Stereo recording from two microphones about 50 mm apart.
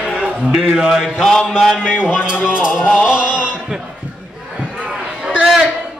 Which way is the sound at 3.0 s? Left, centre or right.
Centre.